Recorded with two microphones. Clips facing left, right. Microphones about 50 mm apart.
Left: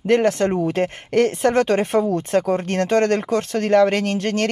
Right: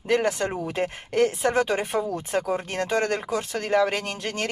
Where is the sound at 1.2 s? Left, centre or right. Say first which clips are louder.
Left 3 dB; centre.